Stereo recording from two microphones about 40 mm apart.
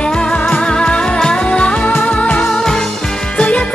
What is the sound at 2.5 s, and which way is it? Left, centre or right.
Music, centre.